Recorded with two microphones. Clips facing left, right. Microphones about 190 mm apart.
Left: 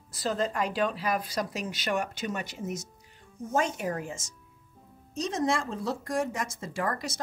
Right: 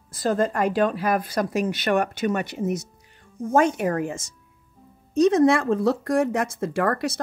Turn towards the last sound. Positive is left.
turn(degrees=-65)  # may be behind; listen again after turning